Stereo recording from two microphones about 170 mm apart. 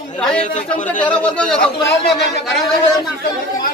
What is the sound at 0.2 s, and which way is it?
Speech, 5° left (ahead or behind).